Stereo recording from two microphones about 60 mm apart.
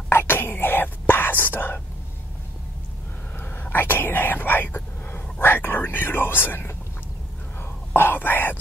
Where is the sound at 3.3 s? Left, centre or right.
Left.